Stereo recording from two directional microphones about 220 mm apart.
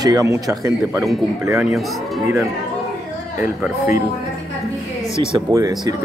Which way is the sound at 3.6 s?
10° right (ahead or behind).